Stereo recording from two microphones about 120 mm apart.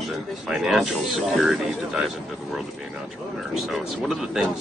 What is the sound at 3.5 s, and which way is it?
Speech, centre (ahead or behind).